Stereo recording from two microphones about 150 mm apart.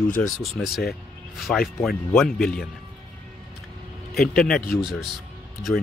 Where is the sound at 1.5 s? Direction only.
10° left (ahead or behind).